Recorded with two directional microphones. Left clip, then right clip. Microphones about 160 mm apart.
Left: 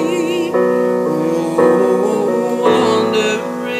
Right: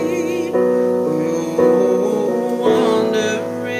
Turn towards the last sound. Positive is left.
turn(degrees=-40)  # may be behind; listen again after turning